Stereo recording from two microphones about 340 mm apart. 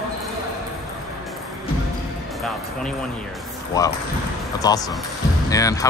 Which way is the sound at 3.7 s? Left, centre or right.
Centre.